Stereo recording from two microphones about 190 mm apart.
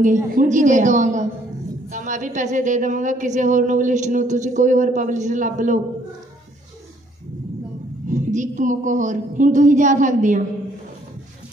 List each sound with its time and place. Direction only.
0.0 s a woman's voice: 45° right (ahead or behind)
8.1 s a woman's voice: 40° right (ahead or behind)